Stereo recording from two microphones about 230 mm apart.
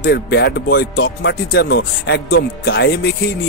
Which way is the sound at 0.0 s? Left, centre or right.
Left.